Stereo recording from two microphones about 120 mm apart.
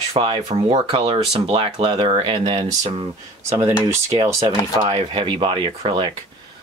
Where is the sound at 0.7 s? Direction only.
50° right (ahead or behind).